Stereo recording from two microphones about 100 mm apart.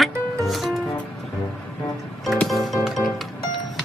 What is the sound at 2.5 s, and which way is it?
Music, centre (ahead or behind).